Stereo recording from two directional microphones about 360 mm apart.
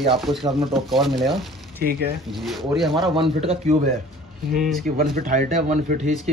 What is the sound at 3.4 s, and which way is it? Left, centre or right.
Speech, centre.